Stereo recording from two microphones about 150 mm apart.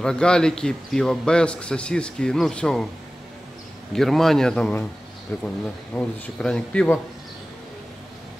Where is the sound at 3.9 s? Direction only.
Centre (ahead or behind).